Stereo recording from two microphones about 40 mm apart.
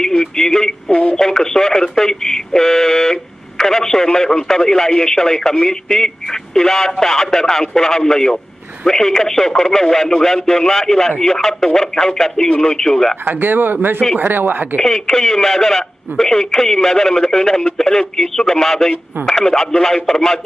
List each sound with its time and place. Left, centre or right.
0.0 s speech: centre
12.7 s speech: centre
13.2 s speech: right
14.8 s speech: centre